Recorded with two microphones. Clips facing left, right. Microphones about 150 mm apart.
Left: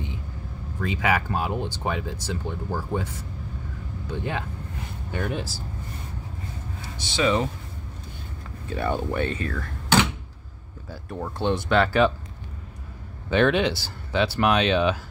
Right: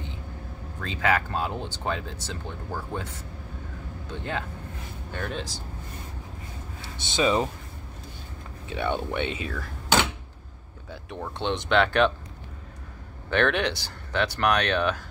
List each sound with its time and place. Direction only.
0.7 s speech: 10° left (ahead or behind)
4.1 s speech: 10° left (ahead or behind)
6.8 s speech: 20° right (ahead or behind)
8.6 s speech: centre (ahead or behind)
10.9 s speech: 5° left (ahead or behind)
13.3 s speech: 10° left (ahead or behind)